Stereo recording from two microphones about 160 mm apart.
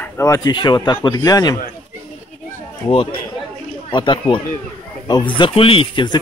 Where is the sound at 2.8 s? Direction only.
30° left (ahead or behind).